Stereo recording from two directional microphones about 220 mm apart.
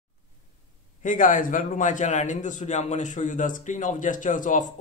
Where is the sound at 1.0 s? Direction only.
35° left (ahead or behind).